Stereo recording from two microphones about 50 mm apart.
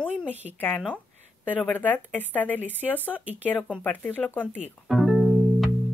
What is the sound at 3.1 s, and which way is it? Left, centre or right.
Speech, right.